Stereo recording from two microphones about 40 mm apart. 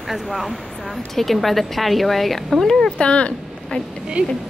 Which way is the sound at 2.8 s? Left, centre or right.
Left.